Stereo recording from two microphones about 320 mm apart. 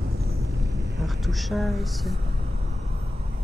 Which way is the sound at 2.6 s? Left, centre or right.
Centre.